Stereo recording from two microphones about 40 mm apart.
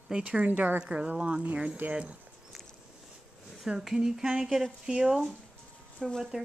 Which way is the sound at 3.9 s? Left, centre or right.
Centre.